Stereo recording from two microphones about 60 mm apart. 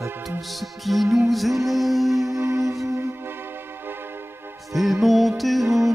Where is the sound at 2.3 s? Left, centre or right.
Right.